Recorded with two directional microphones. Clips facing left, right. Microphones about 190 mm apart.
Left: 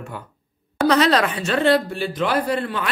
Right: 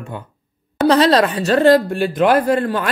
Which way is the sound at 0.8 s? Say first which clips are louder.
Right 4 dB; 35° right (ahead or behind).